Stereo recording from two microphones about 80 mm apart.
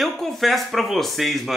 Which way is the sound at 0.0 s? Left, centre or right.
Centre.